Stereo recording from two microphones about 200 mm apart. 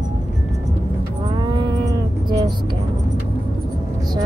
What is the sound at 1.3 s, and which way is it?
Cattle, 20° right (ahead or behind).